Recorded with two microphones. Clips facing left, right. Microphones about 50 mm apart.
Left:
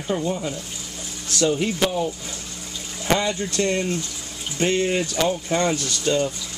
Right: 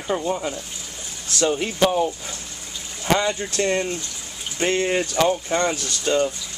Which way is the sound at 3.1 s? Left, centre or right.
Centre.